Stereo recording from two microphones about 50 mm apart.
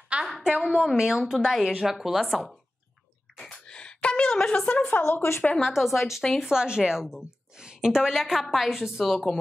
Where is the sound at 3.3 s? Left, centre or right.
Centre.